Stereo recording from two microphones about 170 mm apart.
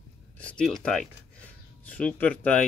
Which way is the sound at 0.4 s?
5° left (ahead or behind).